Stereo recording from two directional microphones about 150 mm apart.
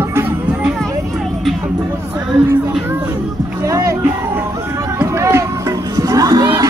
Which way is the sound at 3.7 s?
20° right (ahead or behind).